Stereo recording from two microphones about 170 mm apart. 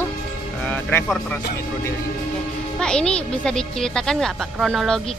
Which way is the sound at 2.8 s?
5° left (ahead or behind).